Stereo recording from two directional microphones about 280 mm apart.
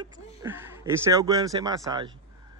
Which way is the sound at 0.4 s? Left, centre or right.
Centre.